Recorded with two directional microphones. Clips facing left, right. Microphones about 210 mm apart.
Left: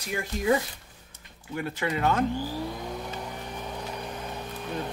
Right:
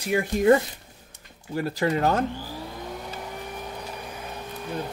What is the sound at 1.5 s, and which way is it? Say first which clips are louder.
Speech: right 5 dB; 35° right (ahead or behind).